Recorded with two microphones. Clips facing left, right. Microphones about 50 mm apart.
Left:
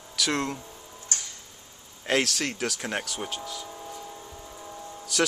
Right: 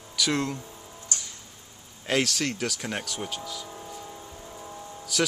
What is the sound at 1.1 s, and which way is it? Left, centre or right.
Tick-tock, left.